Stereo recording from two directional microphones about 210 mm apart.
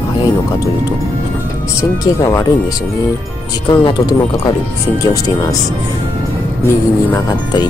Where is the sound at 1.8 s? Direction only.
15° left (ahead or behind).